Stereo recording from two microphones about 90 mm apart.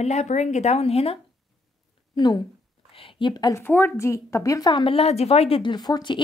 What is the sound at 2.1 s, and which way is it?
Speech, 55° left (ahead or behind).